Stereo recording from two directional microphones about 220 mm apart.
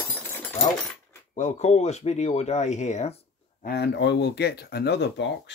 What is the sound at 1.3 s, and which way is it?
Speech, 30° left (ahead or behind).